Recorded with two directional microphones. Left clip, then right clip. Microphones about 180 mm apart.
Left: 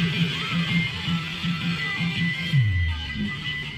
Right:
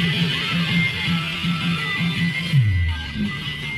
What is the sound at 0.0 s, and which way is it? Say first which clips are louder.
Music: right 5 dB; 30° left (ahead or behind).